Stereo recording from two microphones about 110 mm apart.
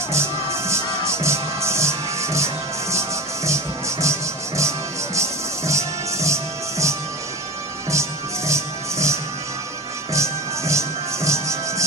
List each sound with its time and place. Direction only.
0.1 s music: 25° right (ahead or behind)